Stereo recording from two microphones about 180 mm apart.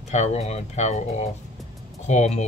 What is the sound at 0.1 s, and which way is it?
Speech, 40° left (ahead or behind).